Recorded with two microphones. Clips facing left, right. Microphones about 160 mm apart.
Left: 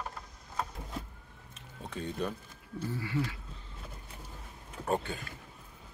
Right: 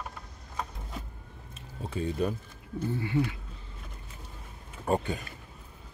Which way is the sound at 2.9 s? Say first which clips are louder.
Right 5 dB; 25° right (ahead or behind).